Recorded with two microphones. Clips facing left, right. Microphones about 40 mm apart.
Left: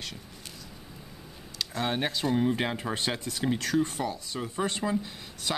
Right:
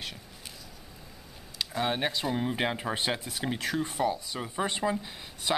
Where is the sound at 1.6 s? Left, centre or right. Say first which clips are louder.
Even; centre.